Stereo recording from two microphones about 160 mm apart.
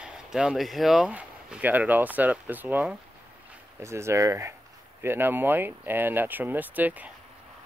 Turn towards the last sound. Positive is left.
turn(degrees=-10)  # may be behind; listen again after turning